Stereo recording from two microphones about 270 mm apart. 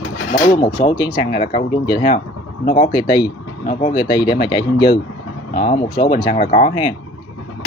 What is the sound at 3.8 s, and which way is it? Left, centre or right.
Speech, centre.